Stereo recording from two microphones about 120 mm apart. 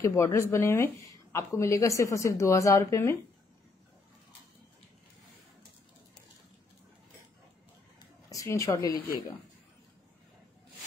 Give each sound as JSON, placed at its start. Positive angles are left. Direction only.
{"t": 0.0, "sound": "speech", "side_deg": 25}
{"t": 8.3, "sound": "speech", "side_deg": 25}